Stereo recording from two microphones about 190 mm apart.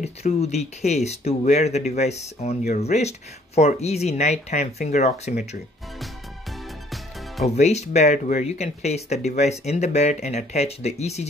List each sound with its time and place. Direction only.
0.0 s speech: 35° left (ahead or behind)
6.9 s music: centre (ahead or behind)
7.4 s speech: 35° left (ahead or behind)